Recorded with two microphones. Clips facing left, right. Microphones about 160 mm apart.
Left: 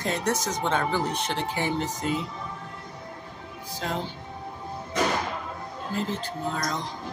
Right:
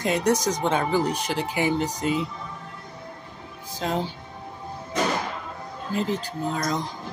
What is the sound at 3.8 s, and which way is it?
Speech, 20° right (ahead or behind).